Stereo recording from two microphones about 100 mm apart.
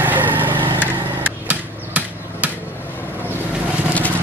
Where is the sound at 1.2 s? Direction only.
15° right (ahead or behind).